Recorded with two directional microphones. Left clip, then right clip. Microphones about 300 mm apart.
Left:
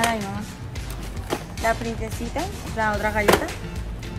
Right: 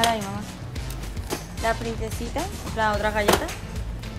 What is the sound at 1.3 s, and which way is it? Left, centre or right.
Speech, centre.